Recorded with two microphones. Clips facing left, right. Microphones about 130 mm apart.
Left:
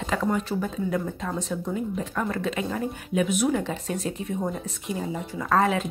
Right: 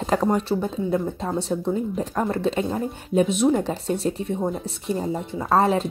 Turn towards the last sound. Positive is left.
turn(degrees=-35)  # may be behind; listen again after turning